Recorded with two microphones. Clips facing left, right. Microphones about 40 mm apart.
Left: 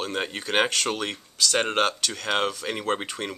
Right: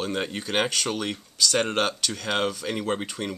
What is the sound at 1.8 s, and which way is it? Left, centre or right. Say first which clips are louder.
Speech: left 1 dB; centre.